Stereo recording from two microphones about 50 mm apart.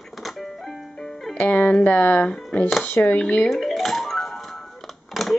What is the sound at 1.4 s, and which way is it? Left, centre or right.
Speech, left.